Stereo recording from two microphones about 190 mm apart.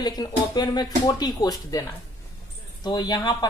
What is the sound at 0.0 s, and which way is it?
Speech, 20° left (ahead or behind).